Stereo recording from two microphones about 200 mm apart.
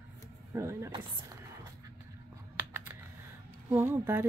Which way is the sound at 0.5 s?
15° right (ahead or behind).